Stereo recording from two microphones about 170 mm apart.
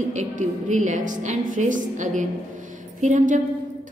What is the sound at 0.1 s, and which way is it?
A woman's voice, 45° right (ahead or behind).